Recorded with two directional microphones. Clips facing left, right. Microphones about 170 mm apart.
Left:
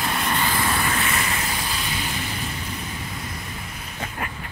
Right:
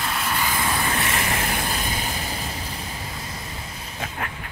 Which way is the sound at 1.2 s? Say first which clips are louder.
Right 2 dB; 55° right (ahead or behind).